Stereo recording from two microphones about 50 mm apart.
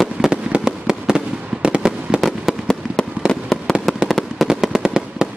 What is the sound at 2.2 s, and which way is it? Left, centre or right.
Fireworks, centre.